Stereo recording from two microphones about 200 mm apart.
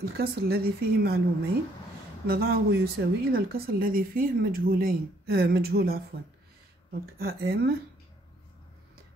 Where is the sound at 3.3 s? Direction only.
50° right (ahead or behind).